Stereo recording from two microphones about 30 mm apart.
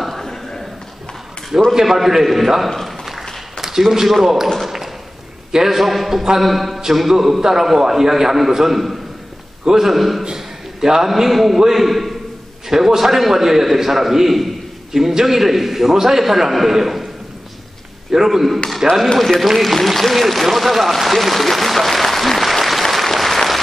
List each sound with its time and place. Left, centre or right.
0.0 s a sound: centre
1.7 s a man's voice: centre
4.2 s a man's voice: centre
5.5 s a man's voice: centre
10.3 s a sound: centre
11.1 s a man's voice: centre
12.6 s a man's voice: centre
18.1 s a man's voice: centre
19.6 s applause: centre